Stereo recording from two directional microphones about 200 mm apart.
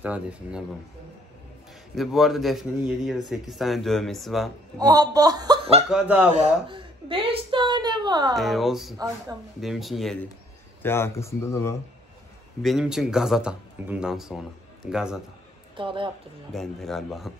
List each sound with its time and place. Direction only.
0.0 s speech: 5° right (ahead or behind)
2.0 s speech: centre (ahead or behind)
4.7 s a woman's voice: 20° right (ahead or behind)
5.9 s speech: 5° right (ahead or behind)
6.3 s a woman's voice: 30° right (ahead or behind)
8.4 s speech: centre (ahead or behind)
10.8 s speech: 10° left (ahead or behind)
12.6 s speech: centre (ahead or behind)
15.7 s a woman's voice: 25° right (ahead or behind)
16.5 s speech: centre (ahead or behind)